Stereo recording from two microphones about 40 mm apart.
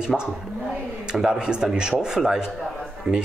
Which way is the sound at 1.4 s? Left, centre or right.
Centre.